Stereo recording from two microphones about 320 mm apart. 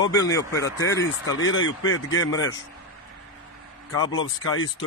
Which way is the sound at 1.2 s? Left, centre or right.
Left.